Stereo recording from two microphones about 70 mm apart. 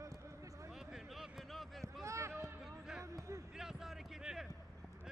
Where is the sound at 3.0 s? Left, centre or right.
Right.